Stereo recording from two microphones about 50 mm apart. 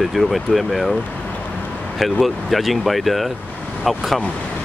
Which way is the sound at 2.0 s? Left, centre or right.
Centre.